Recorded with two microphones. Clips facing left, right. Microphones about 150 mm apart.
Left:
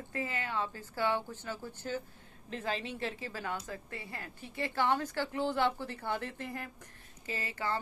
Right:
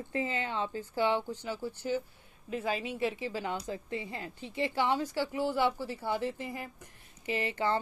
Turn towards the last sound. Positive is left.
turn(degrees=-25)  # may be behind; listen again after turning